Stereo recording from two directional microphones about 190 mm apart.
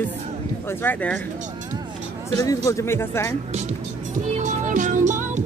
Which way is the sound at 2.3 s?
15° left (ahead or behind).